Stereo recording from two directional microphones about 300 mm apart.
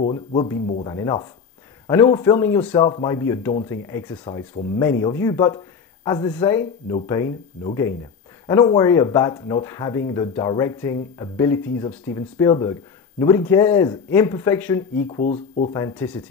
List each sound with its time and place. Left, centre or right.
0.0 s speech: centre
15.2 s speech: left
15.7 s speech: centre